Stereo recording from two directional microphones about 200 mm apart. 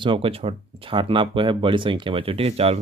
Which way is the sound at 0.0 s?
25° right (ahead or behind).